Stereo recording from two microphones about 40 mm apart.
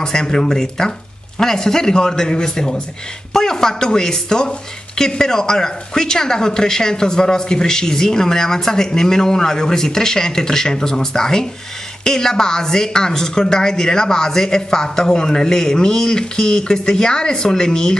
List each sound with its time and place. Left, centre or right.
0.0 s a woman's voice: centre